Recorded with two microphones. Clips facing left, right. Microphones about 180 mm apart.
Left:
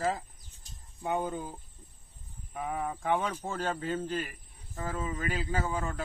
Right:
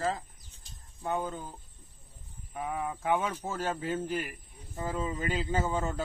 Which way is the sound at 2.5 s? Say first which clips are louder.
Even; centre (ahead or behind).